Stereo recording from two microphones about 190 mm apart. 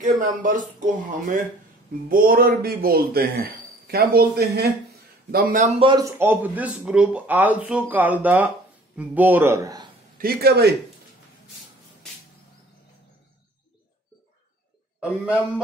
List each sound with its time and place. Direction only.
0.2 s a man's voice: 45° right (ahead or behind); by 9.8 s 20° right (ahead or behind)
10.1 s speech: 55° right (ahead or behind)